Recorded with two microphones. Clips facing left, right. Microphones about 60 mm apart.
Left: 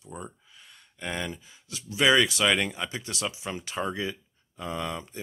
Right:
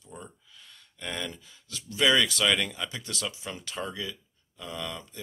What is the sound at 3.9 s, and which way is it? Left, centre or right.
Speech, left.